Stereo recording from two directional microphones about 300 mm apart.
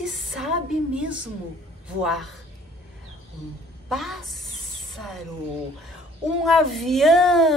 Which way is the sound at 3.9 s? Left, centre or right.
Centre.